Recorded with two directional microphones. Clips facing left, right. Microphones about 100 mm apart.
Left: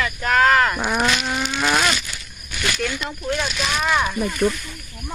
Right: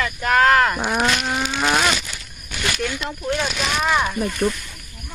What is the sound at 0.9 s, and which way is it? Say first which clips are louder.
Speech: even; 5° right (ahead or behind).